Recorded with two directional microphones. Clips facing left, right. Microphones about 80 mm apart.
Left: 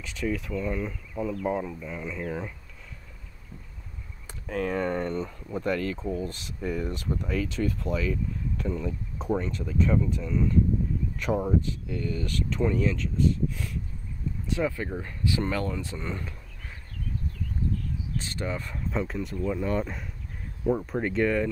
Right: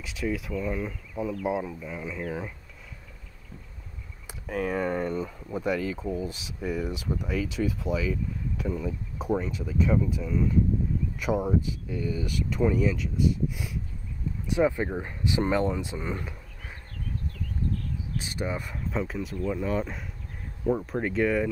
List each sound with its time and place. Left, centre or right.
0.0 s speech: centre
4.3 s speech: centre
18.1 s speech: centre